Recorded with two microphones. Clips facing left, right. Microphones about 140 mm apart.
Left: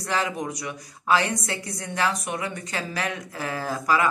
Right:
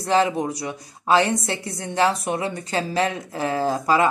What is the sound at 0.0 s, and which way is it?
A woman's voice, 30° right (ahead or behind).